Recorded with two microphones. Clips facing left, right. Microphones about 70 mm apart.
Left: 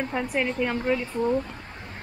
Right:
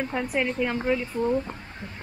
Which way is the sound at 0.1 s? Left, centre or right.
Centre.